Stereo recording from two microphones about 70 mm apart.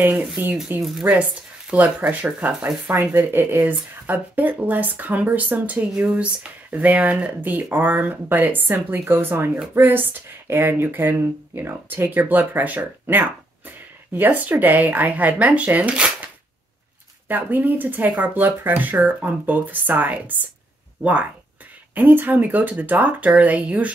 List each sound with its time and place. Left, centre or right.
0.4 s speech: right
0.8 s speech: centre
1.7 s speech: right
2.9 s a woman's voice: right
17.3 s speech: right